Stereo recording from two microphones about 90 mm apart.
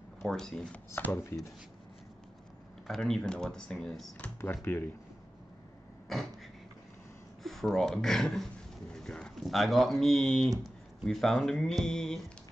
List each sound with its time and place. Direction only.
0.2 s speech: 5° left (ahead or behind)
0.9 s speech: 25° left (ahead or behind)
2.9 s speech: 5° left (ahead or behind)
4.4 s speech: 25° left (ahead or behind)
6.1 s speech: 5° left (ahead or behind)
7.4 s speech: 5° left (ahead or behind)